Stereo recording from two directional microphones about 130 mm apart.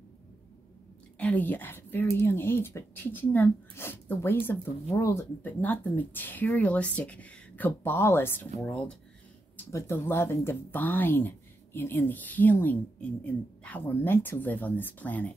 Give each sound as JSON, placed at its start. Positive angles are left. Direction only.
{"t": 1.1, "sound": "speech", "side_deg": 10}
{"t": 9.7, "sound": "speech", "side_deg": 20}